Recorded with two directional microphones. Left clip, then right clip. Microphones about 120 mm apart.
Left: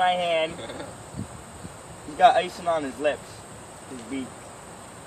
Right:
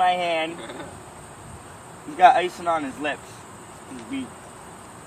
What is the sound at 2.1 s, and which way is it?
Speech, 25° left (ahead or behind).